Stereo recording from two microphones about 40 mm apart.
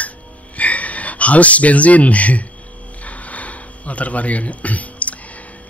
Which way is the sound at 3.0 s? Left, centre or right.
Left.